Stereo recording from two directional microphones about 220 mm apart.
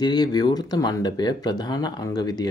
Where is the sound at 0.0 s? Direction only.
20° left (ahead or behind).